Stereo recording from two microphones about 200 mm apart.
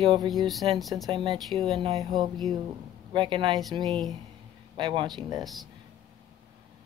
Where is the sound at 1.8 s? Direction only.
25° right (ahead or behind).